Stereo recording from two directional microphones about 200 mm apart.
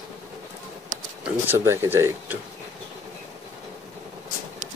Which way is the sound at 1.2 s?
10° right (ahead or behind).